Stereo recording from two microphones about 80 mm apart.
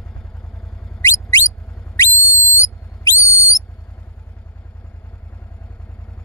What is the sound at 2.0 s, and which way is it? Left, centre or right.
Whistle, left.